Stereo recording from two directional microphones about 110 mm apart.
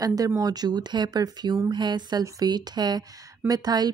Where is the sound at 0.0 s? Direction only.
35° right (ahead or behind).